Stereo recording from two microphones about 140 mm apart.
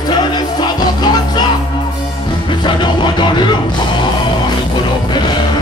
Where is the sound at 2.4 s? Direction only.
35° left (ahead or behind).